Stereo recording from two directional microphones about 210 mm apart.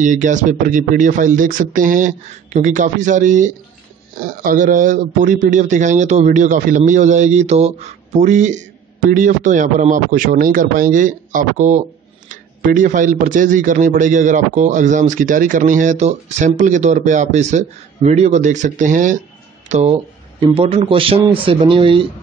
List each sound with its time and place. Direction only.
0.0 s a man's voice: 35° right (ahead or behind)